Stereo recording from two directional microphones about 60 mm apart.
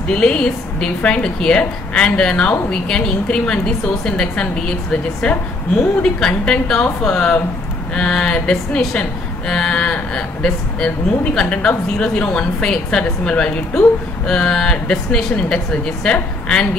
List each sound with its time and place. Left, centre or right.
0.1 s a woman's voice: centre